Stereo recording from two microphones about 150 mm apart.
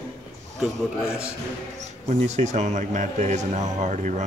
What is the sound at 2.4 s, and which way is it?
A man's voice, 50° right (ahead or behind).